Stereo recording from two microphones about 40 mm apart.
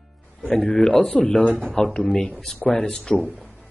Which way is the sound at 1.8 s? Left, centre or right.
Centre.